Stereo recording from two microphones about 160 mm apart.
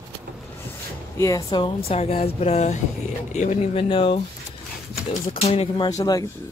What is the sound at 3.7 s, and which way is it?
Speech, 35° left (ahead or behind).